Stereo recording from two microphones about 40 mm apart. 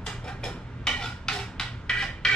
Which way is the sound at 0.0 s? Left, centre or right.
Centre.